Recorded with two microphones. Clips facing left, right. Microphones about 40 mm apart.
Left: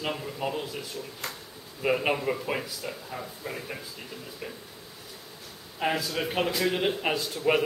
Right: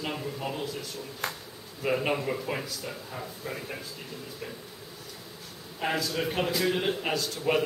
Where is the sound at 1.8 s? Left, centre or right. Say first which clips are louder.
Left 2 dB; centre.